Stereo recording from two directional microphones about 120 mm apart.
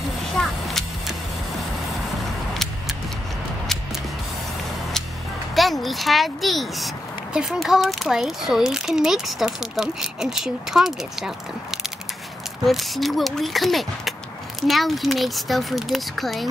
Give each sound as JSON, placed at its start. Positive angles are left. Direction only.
{"t": 0.4, "sound": "whip", "side_deg": 0}
{"t": 2.5, "sound": "vehicle", "side_deg": 0}
{"t": 5.5, "sound": "a child's voice", "side_deg": 0}